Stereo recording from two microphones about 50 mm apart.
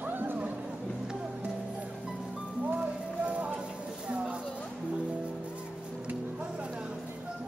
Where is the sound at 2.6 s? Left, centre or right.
Right.